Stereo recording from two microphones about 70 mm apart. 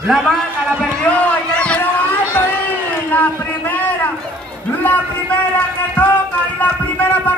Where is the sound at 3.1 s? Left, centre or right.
Left.